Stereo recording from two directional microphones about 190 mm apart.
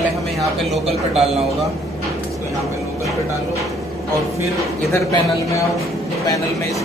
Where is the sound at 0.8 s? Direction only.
35° right (ahead or behind).